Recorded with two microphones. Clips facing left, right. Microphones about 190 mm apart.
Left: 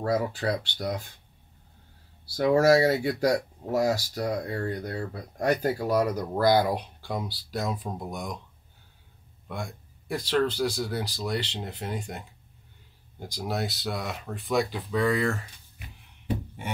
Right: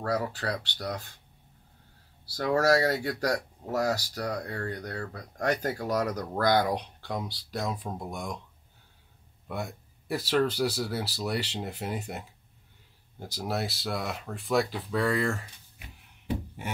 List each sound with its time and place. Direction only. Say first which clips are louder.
0.0 s speech: left 4 dB; 15° left (ahead or behind)
2.3 s speech: left 4 dB; 15° left (ahead or behind)
9.5 s speech: right 1 dB; 5° right (ahead or behind)
13.2 s speech: left 1 dB; 5° right (ahead or behind)